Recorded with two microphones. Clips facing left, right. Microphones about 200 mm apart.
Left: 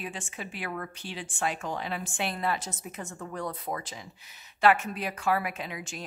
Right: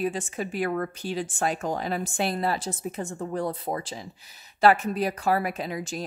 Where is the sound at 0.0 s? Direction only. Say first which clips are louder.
Right 10 dB; 40° right (ahead or behind).